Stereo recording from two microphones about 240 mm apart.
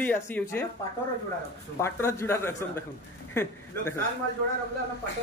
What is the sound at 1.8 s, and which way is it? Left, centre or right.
A man's voice, centre.